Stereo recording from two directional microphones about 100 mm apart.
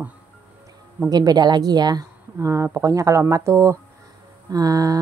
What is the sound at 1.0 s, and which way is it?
Speech, 40° right (ahead or behind).